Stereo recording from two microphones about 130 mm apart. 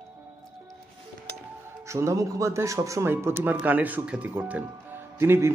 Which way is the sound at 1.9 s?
25° right (ahead or behind).